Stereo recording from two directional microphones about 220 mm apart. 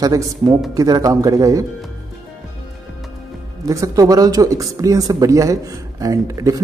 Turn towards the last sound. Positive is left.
turn(degrees=-15)  # may be behind; listen again after turning